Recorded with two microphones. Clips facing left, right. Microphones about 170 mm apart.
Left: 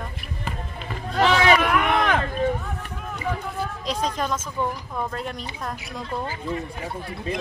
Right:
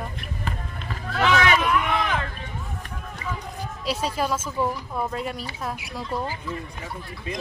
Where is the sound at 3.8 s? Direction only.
5° right (ahead or behind).